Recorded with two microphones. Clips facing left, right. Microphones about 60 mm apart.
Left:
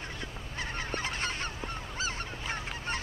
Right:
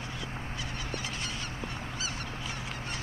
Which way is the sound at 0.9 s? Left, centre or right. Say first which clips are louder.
Left 4 dB; left.